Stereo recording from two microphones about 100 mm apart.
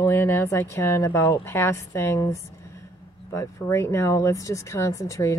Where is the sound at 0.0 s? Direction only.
25° left (ahead or behind).